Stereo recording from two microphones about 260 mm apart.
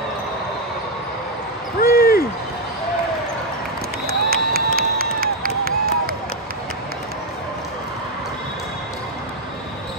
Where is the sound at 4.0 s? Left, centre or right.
Right.